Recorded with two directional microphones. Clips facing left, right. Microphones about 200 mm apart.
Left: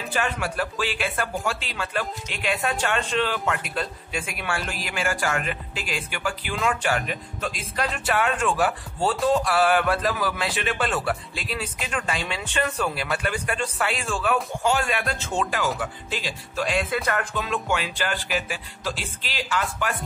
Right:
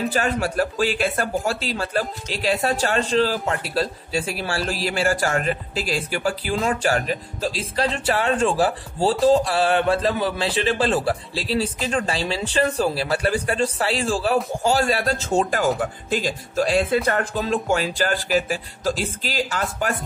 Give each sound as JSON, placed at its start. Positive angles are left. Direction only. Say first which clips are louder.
{"t": 0.1, "sound": "a man's voice", "louder": "right 5 dB", "side_deg": -40}